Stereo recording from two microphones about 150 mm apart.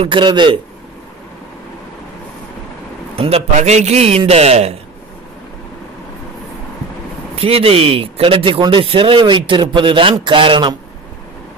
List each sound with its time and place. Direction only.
0.0 s speech: 35° right (ahead or behind)
3.2 s a man's voice: 45° right (ahead or behind)
7.3 s speech: 40° right (ahead or behind)